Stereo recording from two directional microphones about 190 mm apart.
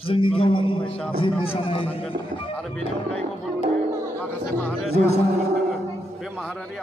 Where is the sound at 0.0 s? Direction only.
30° left (ahead or behind).